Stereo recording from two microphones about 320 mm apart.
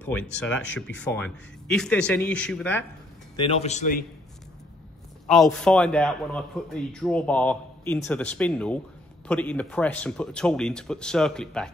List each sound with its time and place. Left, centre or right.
0.0 s a man's voice: centre
3.3 s speech: centre
5.3 s a man's voice: centre